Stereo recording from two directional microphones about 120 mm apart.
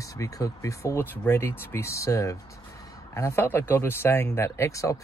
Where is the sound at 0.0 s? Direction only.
25° left (ahead or behind).